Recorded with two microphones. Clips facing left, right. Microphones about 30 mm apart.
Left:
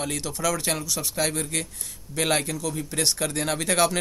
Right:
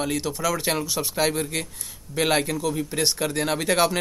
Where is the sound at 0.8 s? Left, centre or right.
Right.